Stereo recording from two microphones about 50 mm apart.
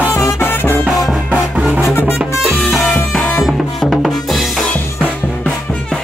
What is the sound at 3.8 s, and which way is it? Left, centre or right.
Drum, centre.